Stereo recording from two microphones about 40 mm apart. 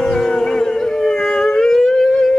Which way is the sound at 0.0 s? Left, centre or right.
Centre.